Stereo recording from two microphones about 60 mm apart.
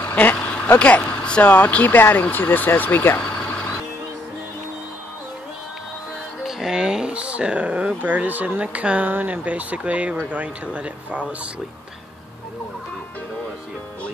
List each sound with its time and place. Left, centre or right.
0.0 s vehicle: left
0.7 s speech: left
6.4 s speech: centre